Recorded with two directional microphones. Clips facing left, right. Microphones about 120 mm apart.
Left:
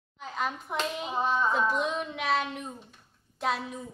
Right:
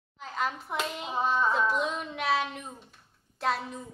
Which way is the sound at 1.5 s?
Centre (ahead or behind).